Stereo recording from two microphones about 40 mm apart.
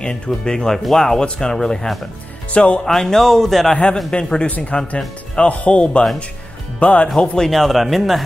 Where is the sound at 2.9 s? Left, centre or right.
Centre.